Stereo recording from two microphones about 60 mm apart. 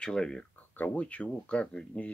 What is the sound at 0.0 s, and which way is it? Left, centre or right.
Speech, centre.